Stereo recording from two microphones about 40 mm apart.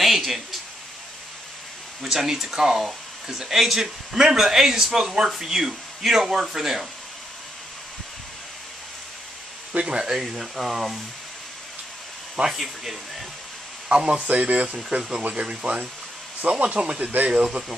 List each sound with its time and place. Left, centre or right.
0.0 s a sound: centre
2.0 s speech: centre
9.8 s speech: right
10.0 s speech: centre
12.4 s speech: centre
13.8 s speech: right
15.0 s speech: centre